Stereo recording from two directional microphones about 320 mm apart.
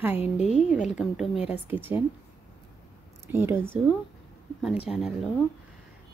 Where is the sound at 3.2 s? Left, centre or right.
Centre.